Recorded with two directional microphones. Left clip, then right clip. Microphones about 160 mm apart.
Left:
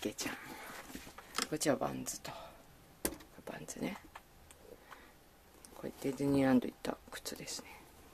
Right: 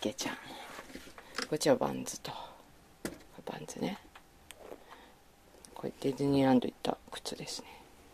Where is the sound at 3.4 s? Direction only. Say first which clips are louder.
Right 4 dB; 10° right (ahead or behind).